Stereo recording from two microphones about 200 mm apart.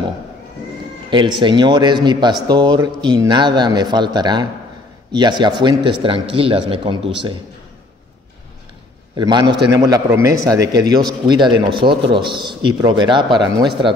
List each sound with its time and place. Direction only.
1.4 s speech: 20° right (ahead or behind)
9.1 s a man's voice: 20° right (ahead or behind)